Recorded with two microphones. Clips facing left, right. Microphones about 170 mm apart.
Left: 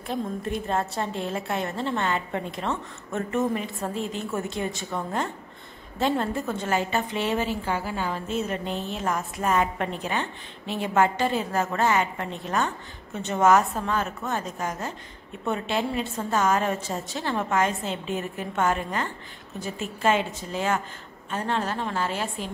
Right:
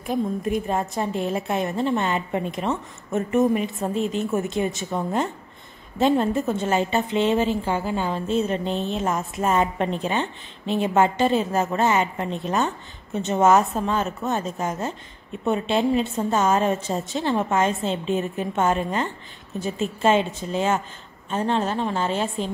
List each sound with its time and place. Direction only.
0.1 s a woman's voice: 15° right (ahead or behind)